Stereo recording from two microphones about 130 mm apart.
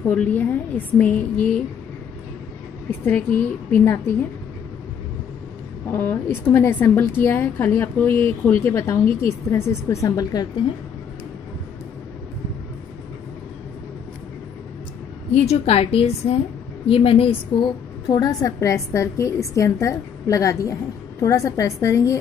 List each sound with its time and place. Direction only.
0.0 s a woman's voice: 15° left (ahead or behind)
2.9 s a woman's voice: 15° left (ahead or behind)
5.9 s a woman's voice: 15° left (ahead or behind)
15.3 s a woman's voice: 50° left (ahead or behind)
18.0 s a woman's voice: 30° left (ahead or behind)